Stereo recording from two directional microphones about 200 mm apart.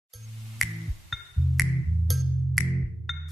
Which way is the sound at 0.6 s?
Centre (ahead or behind).